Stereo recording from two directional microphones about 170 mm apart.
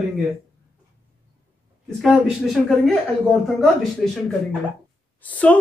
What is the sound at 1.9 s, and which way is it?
A woman's voice, centre (ahead or behind).